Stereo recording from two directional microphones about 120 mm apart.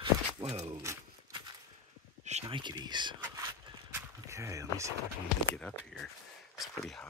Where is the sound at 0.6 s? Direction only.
25° right (ahead or behind).